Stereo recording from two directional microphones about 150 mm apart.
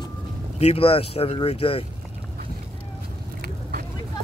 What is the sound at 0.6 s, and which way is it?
Speech, 40° left (ahead or behind).